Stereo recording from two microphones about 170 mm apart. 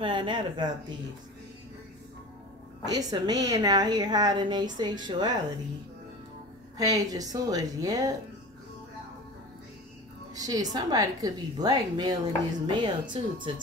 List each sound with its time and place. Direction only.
0.0 s a woman's voice: 30° right (ahead or behind)
2.8 s a woman's voice: 20° right (ahead or behind)
6.8 s a woman's voice: 20° right (ahead or behind)
10.3 s a woman's voice: 20° right (ahead or behind)